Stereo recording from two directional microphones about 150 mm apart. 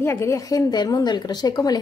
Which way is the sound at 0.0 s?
20° left (ahead or behind).